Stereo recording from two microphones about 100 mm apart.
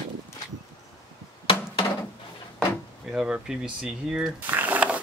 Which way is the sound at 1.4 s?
60° left (ahead or behind).